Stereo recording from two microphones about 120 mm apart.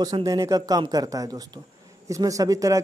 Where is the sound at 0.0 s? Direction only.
30° right (ahead or behind).